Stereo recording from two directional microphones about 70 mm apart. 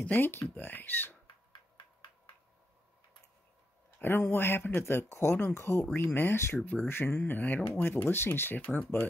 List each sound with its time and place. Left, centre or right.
0.0 s speech: left
4.0 s speech: left
6.6 s speech: left